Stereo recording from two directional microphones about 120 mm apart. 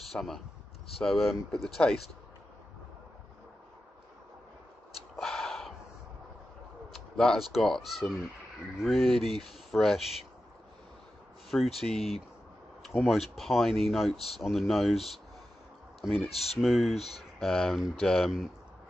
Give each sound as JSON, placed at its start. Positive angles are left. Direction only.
{"t": 0.1, "sound": "speech", "side_deg": 0}
{"t": 5.2, "sound": "gasp", "side_deg": 5}
{"t": 6.9, "sound": "speech", "side_deg": 0}
{"t": 11.5, "sound": "speech", "side_deg": 5}
{"t": 16.9, "sound": "speech", "side_deg": 60}
{"t": 17.4, "sound": "speech", "side_deg": 5}